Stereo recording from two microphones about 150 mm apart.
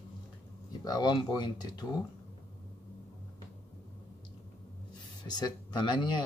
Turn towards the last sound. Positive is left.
turn(degrees=30)  # may be behind; listen again after turning